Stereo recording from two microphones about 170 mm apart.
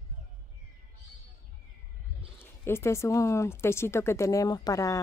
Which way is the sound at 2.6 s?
15° left (ahead or behind).